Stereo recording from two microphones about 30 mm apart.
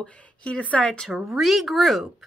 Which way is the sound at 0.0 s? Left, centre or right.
Left.